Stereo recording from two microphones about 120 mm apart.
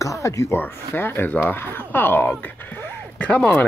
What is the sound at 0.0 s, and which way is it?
Speech, 25° left (ahead or behind).